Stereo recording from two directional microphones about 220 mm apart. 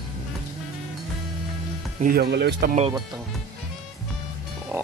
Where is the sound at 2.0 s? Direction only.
45° right (ahead or behind).